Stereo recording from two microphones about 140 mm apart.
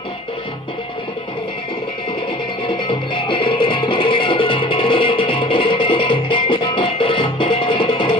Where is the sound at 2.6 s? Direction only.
40° left (ahead or behind).